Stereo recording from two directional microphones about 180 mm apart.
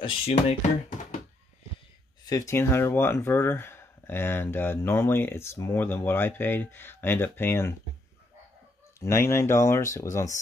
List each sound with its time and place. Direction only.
0.0 s speech: 35° left (ahead or behind)
2.2 s speech: 20° left (ahead or behind)
9.0 s speech: 15° left (ahead or behind)